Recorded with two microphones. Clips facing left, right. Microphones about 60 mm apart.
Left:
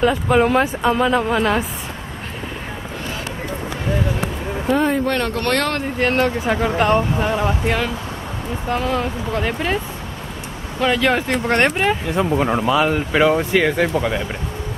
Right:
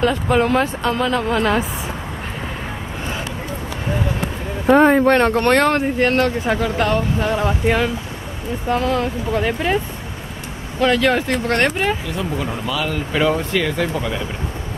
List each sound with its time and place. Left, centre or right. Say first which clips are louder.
0.0 s speech: left 1 dB; centre
4.6 s speech: right 6 dB; right
5.4 s speech: right 5 dB; right
5.9 s speech: right 1 dB; centre
6.8 s speech: left 3 dB; centre
7.6 s speech: right 3 dB; centre
10.8 s speech: right 1 dB; centre
12.2 s speech: left 6 dB; left
13.2 s speech: left 3 dB; centre